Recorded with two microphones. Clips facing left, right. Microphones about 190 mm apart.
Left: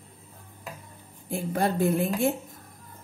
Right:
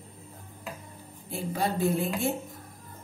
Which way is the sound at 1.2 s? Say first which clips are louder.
Left 3 dB; 50° left (ahead or behind).